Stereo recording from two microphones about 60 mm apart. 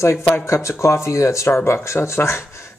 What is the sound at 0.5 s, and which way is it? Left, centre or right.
A man's voice, left.